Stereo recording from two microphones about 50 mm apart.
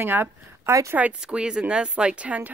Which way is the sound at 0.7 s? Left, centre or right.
Right.